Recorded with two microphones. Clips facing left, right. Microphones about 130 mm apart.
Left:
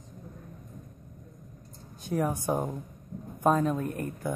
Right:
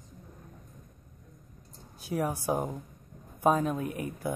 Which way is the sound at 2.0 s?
5° right (ahead or behind).